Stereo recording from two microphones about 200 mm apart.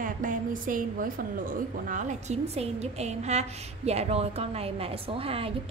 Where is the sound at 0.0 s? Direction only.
40° right (ahead or behind).